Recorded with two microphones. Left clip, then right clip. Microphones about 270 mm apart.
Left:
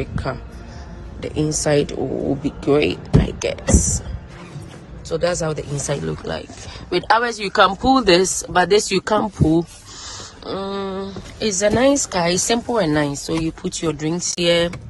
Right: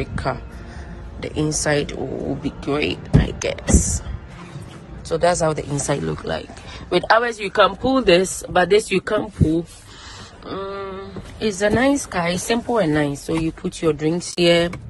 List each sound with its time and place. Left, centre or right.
0.0 s speech: centre
3.2 s beatboxing: centre
3.7 s speech: centre
5.1 s speech: centre
10.4 s a sound: centre
11.3 s speech: centre